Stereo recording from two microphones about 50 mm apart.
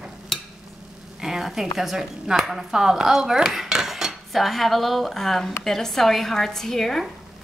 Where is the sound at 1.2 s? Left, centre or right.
Centre.